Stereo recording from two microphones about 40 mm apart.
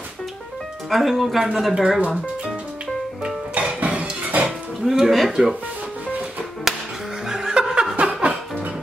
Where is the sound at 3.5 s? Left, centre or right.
Right.